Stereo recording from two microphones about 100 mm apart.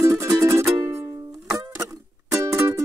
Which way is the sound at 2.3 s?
30° right (ahead or behind).